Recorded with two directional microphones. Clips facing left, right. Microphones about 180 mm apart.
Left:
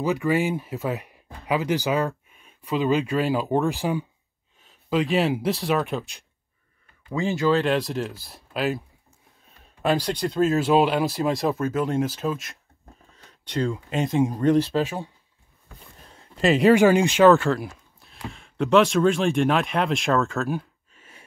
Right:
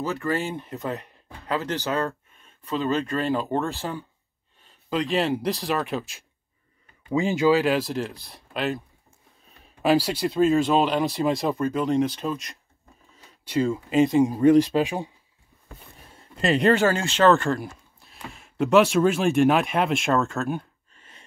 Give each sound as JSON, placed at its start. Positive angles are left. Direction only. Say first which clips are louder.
{"t": 0.0, "sound": "speech", "louder": "left 4 dB", "side_deg": 15}
{"t": 4.6, "sound": "speech", "louder": "left 3 dB", "side_deg": 0}
{"t": 7.1, "sound": "speech", "louder": "right 2 dB", "side_deg": -15}
{"t": 7.5, "sound": "speech", "louder": "even", "side_deg": 0}
{"t": 16.1, "sound": "a sound", "louder": "left 3 dB", "side_deg": 0}
{"t": 16.7, "sound": "speech", "louder": "left 5 dB", "side_deg": 15}